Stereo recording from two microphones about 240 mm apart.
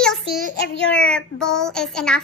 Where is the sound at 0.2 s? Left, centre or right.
Left.